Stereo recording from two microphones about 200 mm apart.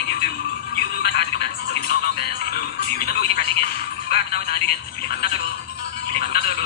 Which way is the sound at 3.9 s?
55° left (ahead or behind).